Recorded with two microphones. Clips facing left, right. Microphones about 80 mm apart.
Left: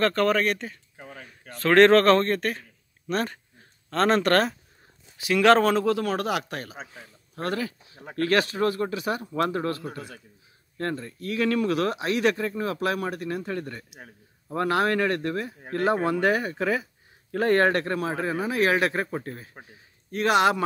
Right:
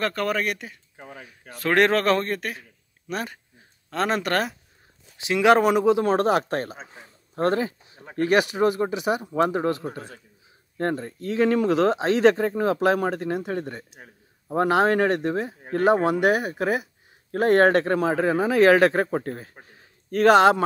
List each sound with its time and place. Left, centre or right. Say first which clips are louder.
0.0 s speech: left 3 dB; centre
5.1 s speech: right 1 dB; right
6.0 s a man's voice: right 6 dB; right
17.6 s a man's voice: right 5 dB; right